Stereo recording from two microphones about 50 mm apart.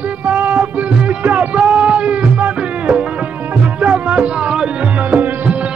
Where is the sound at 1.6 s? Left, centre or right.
Right.